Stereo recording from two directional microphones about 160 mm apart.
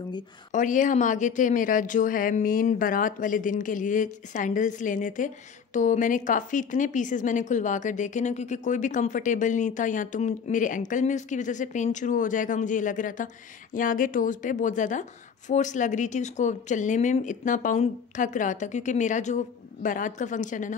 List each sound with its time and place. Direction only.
0.5 s speech: 55° left (ahead or behind)